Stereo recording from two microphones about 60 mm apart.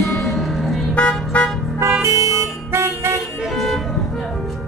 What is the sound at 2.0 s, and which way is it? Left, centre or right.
Music, right.